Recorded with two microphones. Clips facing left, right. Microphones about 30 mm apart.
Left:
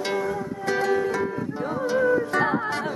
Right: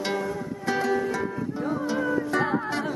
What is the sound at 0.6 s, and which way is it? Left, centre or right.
Music, centre.